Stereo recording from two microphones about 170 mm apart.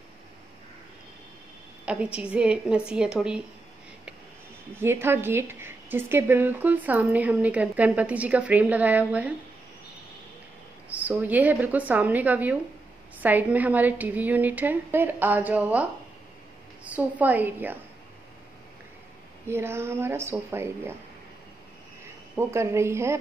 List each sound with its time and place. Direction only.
1.9 s a woman's voice: 5° right (ahead or behind)
4.7 s a woman's voice: 15° right (ahead or behind)
10.9 s a woman's voice: 10° right (ahead or behind)
19.4 s a woman's voice: 15° right (ahead or behind)
22.3 s a woman's voice: 15° right (ahead or behind)